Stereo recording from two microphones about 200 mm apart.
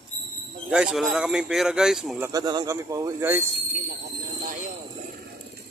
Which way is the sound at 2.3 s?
20° right (ahead or behind).